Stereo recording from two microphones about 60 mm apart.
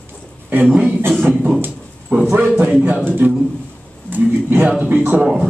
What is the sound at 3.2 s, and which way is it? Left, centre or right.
Speech, right.